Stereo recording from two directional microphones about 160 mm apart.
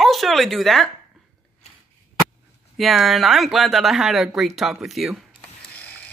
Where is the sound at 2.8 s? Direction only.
Centre (ahead or behind).